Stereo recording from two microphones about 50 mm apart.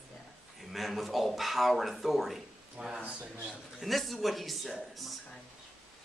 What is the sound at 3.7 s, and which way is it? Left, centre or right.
Speech, centre.